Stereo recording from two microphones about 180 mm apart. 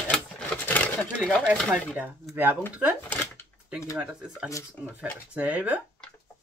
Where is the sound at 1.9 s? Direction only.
10° right (ahead or behind).